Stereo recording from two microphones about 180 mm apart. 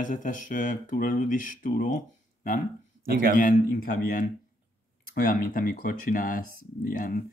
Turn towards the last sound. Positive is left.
turn(degrees=50)  # may be behind; listen again after turning